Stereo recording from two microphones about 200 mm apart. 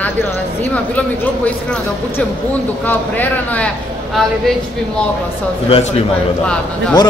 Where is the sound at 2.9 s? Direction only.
10° left (ahead or behind).